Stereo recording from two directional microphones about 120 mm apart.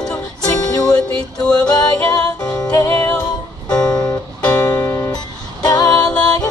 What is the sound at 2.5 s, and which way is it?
Music, 25° left (ahead or behind).